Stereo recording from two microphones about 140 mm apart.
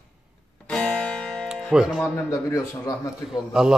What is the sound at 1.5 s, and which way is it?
Speech, 5° right (ahead or behind).